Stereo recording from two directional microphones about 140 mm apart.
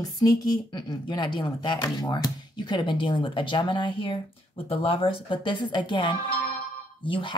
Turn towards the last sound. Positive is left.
turn(degrees=40)  # may be behind; listen again after turning